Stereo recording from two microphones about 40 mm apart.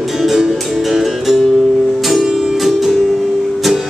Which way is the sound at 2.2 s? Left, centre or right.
Centre.